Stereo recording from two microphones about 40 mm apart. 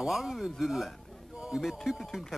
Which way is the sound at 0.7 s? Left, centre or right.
Centre.